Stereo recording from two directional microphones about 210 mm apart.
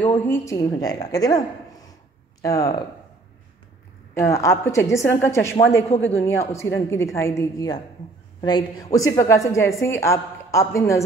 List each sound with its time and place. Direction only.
0.0 s a woman's voice: 10° left (ahead or behind)
4.1 s a woman's voice: 15° left (ahead or behind)
5.6 s a man's voice: 60° left (ahead or behind)
6.5 s a woman's voice: 15° left (ahead or behind)